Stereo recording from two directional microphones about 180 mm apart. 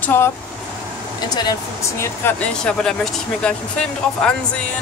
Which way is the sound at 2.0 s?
10° left (ahead or behind).